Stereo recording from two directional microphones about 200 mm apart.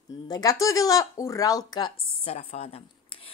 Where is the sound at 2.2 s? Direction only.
30° left (ahead or behind).